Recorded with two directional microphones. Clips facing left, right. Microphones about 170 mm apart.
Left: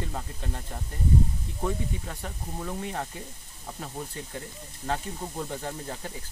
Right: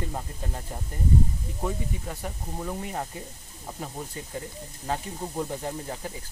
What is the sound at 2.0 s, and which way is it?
Speech, 10° right (ahead or behind).